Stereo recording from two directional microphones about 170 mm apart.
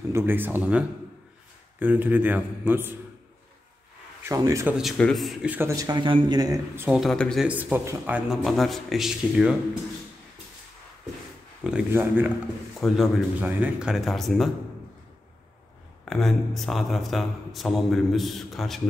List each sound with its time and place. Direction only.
0.1 s speech: 10° right (ahead or behind)
4.2 s speech: 20° right (ahead or behind)
4.6 s speech: 5° right (ahead or behind)
7.0 s a man's voice: 5° left (ahead or behind)
7.4 s a man's voice: 10° right (ahead or behind)
11.6 s speech: 10° right (ahead or behind)
12.8 s a man's voice: centre (ahead or behind)
16.1 s a man's voice: centre (ahead or behind)